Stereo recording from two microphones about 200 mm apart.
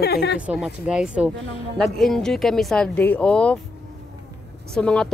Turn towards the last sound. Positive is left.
turn(degrees=5)  # may be behind; listen again after turning